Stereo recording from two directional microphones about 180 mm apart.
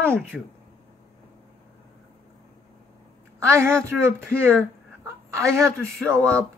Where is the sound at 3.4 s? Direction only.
15° right (ahead or behind).